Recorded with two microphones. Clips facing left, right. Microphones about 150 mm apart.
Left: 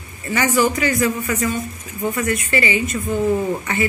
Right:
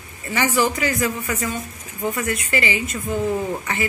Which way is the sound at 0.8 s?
10° right (ahead or behind).